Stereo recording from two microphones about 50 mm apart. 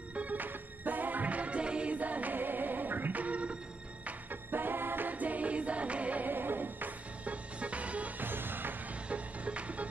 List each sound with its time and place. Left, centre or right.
0.1 s music: right
4.0 s music: right
6.3 s music: right
7.6 s music: right
8.2 s music: right
9.1 s music: right